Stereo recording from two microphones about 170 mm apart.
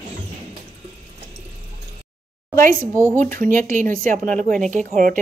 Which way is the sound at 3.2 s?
50° right (ahead or behind).